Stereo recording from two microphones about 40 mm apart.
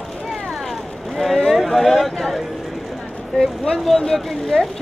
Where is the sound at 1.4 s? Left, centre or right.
Centre.